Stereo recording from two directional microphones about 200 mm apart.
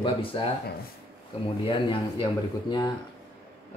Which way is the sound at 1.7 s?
25° left (ahead or behind).